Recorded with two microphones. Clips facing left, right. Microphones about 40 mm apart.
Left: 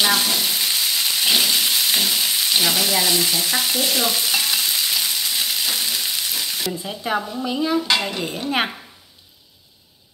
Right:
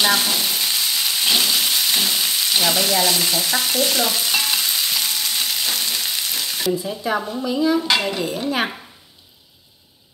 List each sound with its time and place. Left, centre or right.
0.0 s frying: centre
6.9 s a woman's voice: left
7.5 s dishes: centre
7.8 s dishes: centre